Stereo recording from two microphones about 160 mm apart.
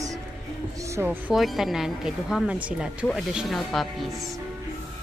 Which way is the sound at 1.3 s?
Centre (ahead or behind).